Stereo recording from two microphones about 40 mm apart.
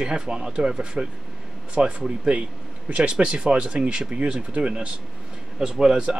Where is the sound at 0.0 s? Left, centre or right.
Centre.